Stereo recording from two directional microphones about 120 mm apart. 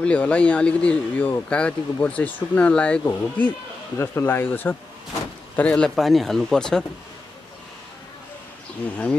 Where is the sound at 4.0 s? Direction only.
20° left (ahead or behind).